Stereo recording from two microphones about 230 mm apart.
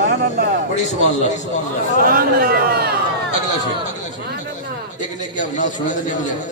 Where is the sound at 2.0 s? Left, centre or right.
Right.